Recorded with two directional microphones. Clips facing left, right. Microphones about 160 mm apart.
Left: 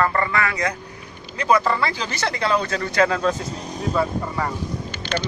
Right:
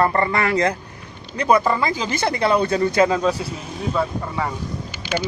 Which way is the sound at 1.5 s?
15° right (ahead or behind).